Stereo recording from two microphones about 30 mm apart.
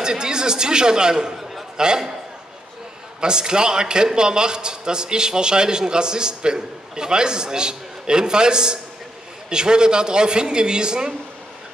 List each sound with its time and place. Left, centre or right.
0.0 s chatter: right
1.8 s a man's voice: right
3.2 s a man's voice: right